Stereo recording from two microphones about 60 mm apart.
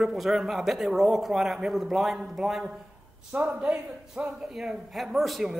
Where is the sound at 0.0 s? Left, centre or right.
Centre.